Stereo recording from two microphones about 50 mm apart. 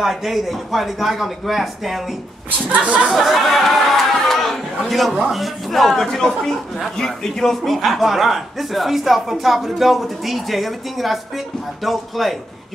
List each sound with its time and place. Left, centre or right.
0.0 s a man's voice: centre
2.7 s speech: right
3.1 s chatter: centre
4.8 s a man's voice: centre